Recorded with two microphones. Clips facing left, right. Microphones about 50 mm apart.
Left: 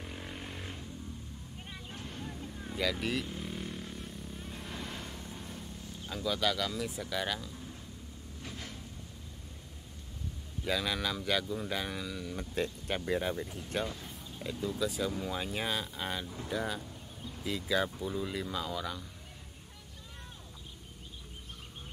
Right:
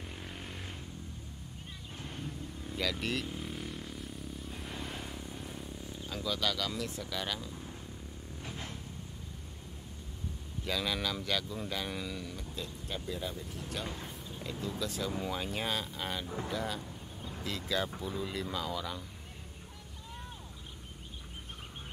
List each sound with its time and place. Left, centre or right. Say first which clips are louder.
0.0 s a sound: left 2 dB; centre
2.2 s vehicle: even; centre
6.0 s speech: left 2 dB; centre
10.6 s speech: left 1 dB; centre
12.4 s speech: left 7 dB; left
13.8 s speech: even; right
14.4 s speech: left 4 dB; centre